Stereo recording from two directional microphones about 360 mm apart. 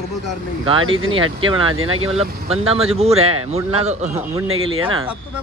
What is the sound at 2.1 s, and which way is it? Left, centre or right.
Speech, centre.